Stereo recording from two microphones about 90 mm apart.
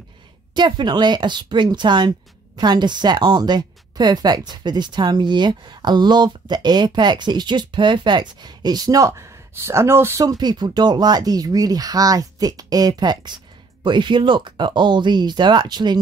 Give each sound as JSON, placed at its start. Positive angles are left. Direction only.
{"t": 0.6, "sound": "speech", "side_deg": -55}
{"t": 10.2, "sound": "speech", "side_deg": -50}